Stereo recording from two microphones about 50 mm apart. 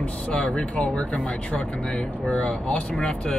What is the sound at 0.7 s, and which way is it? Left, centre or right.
Speech, left.